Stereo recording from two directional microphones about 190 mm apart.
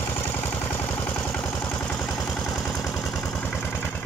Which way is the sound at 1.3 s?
5° left (ahead or behind).